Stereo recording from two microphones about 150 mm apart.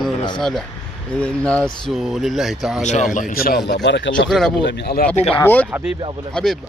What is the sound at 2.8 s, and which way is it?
Speech, 50° left (ahead or behind).